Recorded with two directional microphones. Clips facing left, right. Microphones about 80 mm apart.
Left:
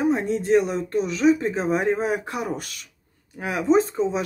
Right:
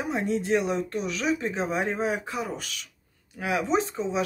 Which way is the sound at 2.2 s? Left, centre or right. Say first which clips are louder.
Left 3 dB; left.